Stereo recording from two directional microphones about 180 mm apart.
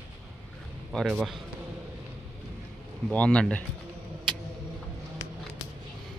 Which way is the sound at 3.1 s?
5° left (ahead or behind).